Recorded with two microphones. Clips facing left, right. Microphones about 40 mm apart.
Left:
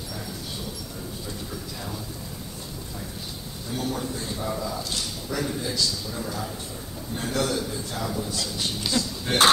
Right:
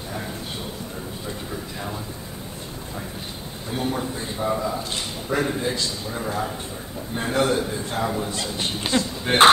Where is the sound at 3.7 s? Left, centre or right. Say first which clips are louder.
Right 3 dB; right.